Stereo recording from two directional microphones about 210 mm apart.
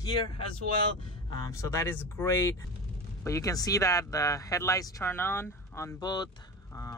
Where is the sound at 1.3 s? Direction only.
15° left (ahead or behind).